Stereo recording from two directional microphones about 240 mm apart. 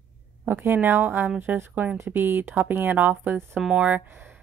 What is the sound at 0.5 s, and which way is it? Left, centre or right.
A woman's voice, centre.